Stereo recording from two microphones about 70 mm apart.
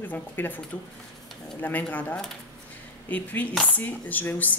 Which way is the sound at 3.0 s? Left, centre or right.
Left.